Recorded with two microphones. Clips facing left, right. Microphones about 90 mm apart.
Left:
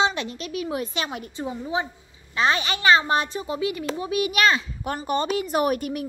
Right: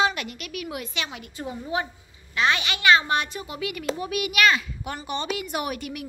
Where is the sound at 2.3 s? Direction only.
35° left (ahead or behind).